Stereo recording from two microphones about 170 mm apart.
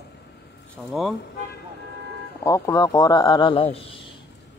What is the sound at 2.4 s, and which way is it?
Speech, 20° left (ahead or behind).